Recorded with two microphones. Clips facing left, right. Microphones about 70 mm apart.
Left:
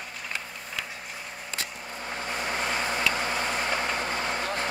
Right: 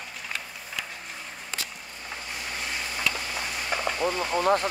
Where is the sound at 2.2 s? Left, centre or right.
Left.